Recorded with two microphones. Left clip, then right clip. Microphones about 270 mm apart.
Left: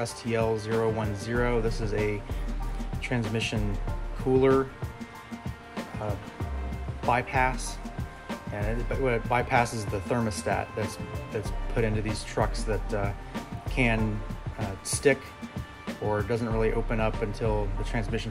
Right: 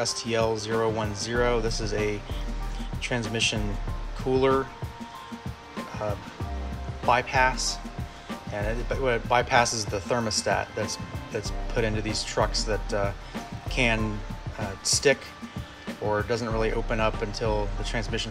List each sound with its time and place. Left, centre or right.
0.3 s speech: centre
1.7 s speech: right
3.0 s speech: centre
5.8 s music: centre
7.0 s speech: centre
14.6 s speech: centre
15.9 s speech: centre